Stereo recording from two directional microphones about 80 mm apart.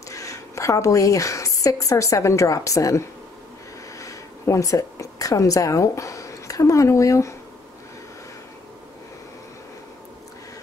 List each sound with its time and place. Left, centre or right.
0.1 s a woman's voice: left